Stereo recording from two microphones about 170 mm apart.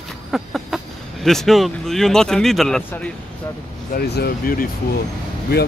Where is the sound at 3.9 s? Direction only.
70° left (ahead or behind).